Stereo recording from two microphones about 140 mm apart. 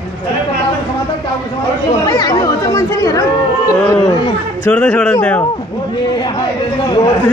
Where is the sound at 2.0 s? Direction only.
30° left (ahead or behind).